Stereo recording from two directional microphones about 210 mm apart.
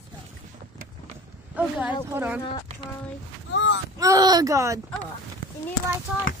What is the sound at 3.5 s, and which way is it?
Speech, 60° left (ahead or behind).